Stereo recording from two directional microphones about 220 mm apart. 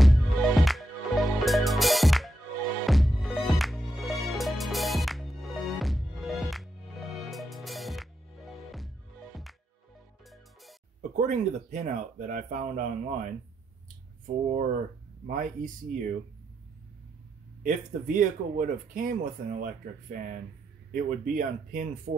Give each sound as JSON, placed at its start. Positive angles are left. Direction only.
{"t": 0.0, "sound": "music", "side_deg": 0}
{"t": 11.0, "sound": "speech", "side_deg": -35}
{"t": 17.6, "sound": "speech", "side_deg": -35}